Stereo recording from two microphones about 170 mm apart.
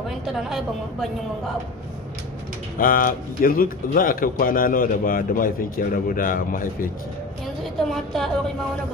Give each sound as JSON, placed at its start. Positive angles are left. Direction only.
{"t": 0.3, "sound": "a woman's voice", "side_deg": 0}
{"t": 2.8, "sound": "speech", "side_deg": 55}
{"t": 7.9, "sound": "a woman's voice", "side_deg": 0}